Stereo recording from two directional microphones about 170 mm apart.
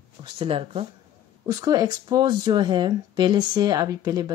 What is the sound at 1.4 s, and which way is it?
Speech, 25° right (ahead or behind).